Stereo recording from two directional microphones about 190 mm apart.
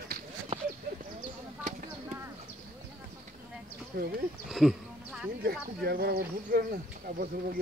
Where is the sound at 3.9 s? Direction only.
60° right (ahead or behind).